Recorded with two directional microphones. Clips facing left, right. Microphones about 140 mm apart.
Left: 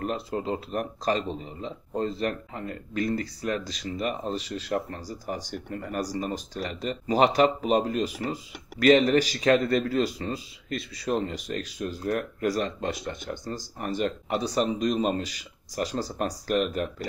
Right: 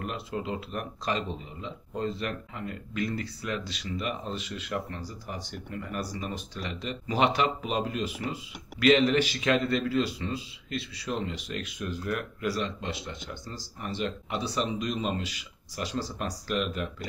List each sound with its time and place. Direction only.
0.0 s speech: 40° left (ahead or behind)